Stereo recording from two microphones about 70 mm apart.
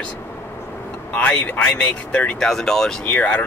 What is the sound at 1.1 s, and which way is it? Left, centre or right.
Speech, centre.